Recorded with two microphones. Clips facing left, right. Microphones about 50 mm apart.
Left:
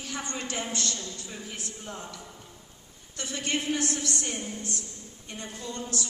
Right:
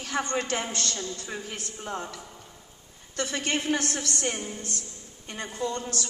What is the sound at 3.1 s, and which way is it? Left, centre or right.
Speech, right.